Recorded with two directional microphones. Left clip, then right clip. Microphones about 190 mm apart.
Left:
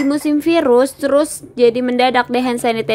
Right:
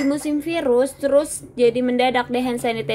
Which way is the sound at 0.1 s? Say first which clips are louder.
Left 8 dB; 25° left (ahead or behind).